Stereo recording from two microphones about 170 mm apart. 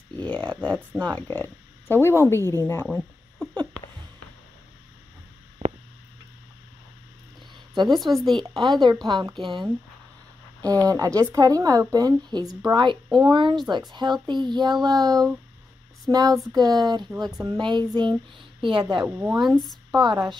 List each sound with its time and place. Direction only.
0.2 s speech: 10° left (ahead or behind)
5.6 s a sound: 35° right (ahead or behind)
7.7 s a woman's voice: 25° right (ahead or behind)
8.1 s speech: centre (ahead or behind)
8.4 s speech: 30° right (ahead or behind)
19.0 s speech: 10° right (ahead or behind)